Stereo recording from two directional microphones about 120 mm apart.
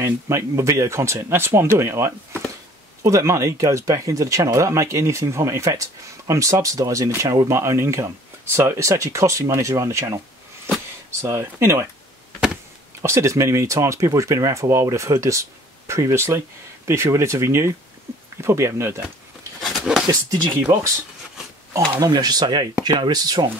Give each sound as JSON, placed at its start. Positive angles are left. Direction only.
{"t": 0.0, "sound": "speech", "side_deg": -25}
{"t": 13.0, "sound": "speech", "side_deg": -25}
{"t": 19.6, "sound": "a sound", "side_deg": 0}
{"t": 20.1, "sound": "speech", "side_deg": -30}
{"t": 22.0, "sound": "speech", "side_deg": -35}